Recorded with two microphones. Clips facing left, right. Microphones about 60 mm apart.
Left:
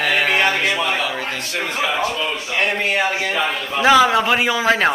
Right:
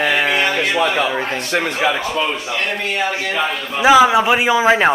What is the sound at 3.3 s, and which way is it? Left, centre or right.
A man's voice, centre.